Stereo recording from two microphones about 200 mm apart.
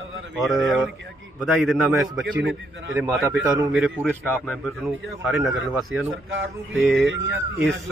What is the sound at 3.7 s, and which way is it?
Speech, 5° right (ahead or behind).